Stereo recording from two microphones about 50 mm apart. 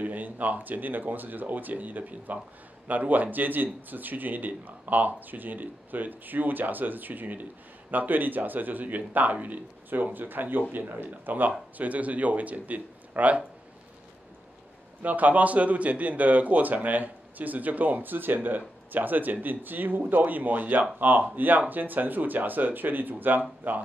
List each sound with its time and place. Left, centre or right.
0.0 s speech: right
15.0 s speech: right